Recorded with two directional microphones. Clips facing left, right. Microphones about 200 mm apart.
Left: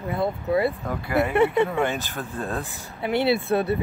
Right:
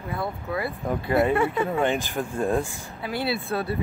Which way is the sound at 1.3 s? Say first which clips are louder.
Left 3 dB; 25° left (ahead or behind).